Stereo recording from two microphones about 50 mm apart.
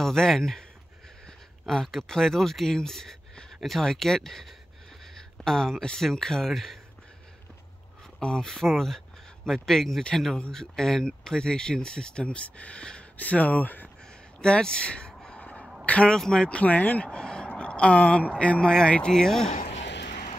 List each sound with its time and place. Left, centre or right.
0.0 s speech: centre
1.7 s speech: centre
8.2 s speech: centre
13.2 s speech: left
14.4 s a man's voice: centre
16.2 s speech: centre
16.4 s speech: left
17.1 s a sound: centre
18.4 s speech: left; by 19.5 s centre